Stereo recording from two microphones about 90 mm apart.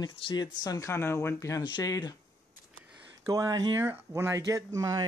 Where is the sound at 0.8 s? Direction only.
30° left (ahead or behind); by 2.1 s 45° left (ahead or behind).